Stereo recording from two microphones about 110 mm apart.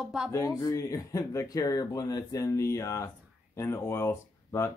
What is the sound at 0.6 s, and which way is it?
Speech, 30° left (ahead or behind).